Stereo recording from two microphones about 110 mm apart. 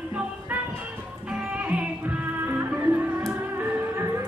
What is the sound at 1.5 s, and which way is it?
Music, 10° right (ahead or behind).